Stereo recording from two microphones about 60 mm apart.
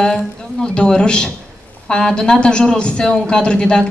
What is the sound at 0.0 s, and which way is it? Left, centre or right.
A man's voice, centre.